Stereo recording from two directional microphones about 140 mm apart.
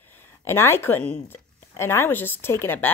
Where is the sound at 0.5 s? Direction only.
15° left (ahead or behind).